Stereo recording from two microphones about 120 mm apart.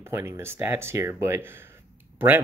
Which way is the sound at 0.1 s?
20° right (ahead or behind).